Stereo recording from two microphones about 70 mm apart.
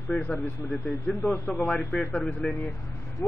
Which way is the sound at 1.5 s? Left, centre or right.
Centre.